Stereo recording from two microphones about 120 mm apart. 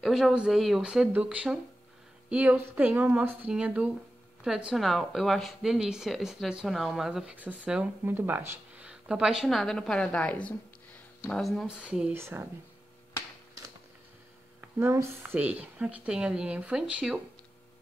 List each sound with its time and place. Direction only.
0.0 s speech: 5° right (ahead or behind)
12.1 s speech: 20° right (ahead or behind)
14.8 s speech: 20° right (ahead or behind)